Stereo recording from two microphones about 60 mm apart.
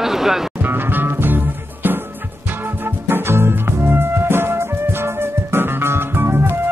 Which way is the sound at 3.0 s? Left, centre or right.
Right.